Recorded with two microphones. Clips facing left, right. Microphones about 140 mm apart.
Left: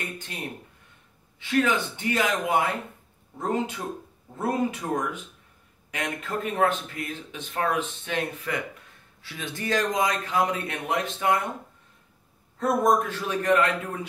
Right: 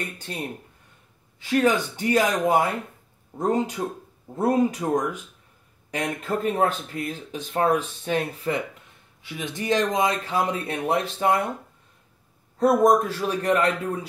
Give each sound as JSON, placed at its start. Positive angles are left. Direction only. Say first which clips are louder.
{"t": 1.4, "sound": "speech", "louder": "right 3 dB", "side_deg": -40}
{"t": 9.2, "sound": "speech", "louder": "right 3 dB", "side_deg": -15}
{"t": 12.5, "sound": "speech", "louder": "right 4 dB", "side_deg": -35}